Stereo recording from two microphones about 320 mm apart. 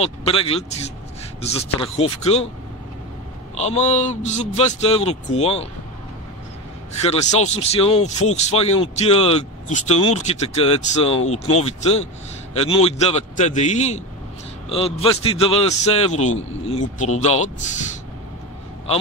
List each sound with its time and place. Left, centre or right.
0.0 s speech: centre
3.5 s speech: left
7.0 s speech: centre
12.5 s speech: centre